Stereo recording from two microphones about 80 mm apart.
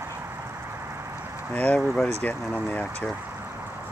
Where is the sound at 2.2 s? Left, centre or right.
Left.